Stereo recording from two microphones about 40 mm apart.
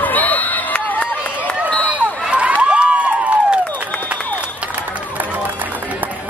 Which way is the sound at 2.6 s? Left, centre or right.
Right.